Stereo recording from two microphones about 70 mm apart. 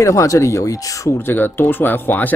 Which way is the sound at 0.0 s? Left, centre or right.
Left.